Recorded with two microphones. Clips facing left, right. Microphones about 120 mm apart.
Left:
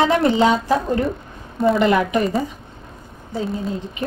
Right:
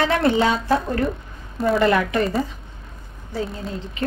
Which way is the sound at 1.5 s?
Centre (ahead or behind).